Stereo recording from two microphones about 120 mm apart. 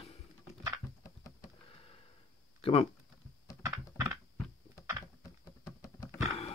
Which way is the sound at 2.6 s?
50° left (ahead or behind).